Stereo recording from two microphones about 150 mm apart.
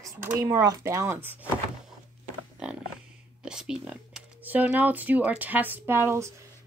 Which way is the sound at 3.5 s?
5° right (ahead or behind).